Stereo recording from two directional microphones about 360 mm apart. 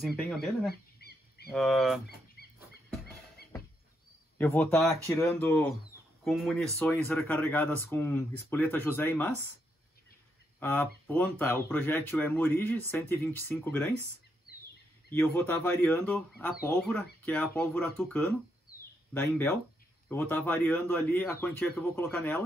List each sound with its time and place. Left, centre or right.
0.0 s speech: centre
0.7 s a sound: left
1.5 s speech: centre
2.0 s a sound: left
4.4 s speech: centre
10.6 s speech: centre
15.1 s speech: centre